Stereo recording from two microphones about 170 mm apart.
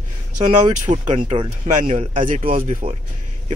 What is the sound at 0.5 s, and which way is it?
Speech, 45° right (ahead or behind).